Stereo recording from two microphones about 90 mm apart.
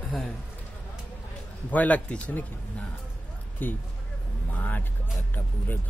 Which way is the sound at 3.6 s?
20° left (ahead or behind).